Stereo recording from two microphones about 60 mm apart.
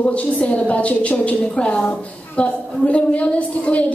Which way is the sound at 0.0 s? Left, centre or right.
Centre.